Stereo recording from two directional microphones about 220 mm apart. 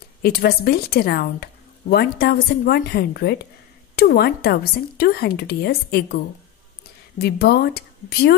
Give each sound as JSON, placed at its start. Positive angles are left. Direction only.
{"t": 0.2, "sound": "speech", "side_deg": 45}